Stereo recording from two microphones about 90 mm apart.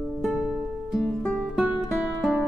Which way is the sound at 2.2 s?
10° right (ahead or behind).